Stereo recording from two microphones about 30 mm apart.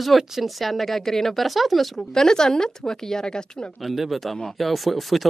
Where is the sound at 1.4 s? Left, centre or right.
Centre.